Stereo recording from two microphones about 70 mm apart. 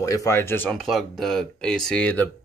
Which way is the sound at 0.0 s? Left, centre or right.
Left.